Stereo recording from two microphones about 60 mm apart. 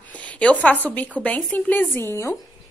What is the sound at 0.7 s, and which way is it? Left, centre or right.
Speech, left.